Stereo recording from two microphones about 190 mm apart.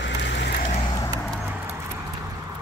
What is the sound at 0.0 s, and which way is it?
Vehicle, 70° left (ahead or behind).